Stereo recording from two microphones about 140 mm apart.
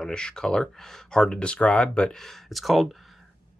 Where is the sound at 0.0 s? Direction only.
5° left (ahead or behind).